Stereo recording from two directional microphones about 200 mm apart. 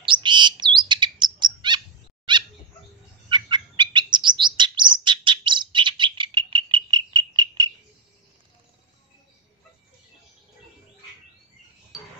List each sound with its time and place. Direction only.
0.0 s bird: 25° right (ahead or behind)
0.8 s chirp: 20° right (ahead or behind)
2.3 s cat: 25° right (ahead or behind)
3.3 s chirp: 20° right (ahead or behind)
11.9 s chink: centre (ahead or behind)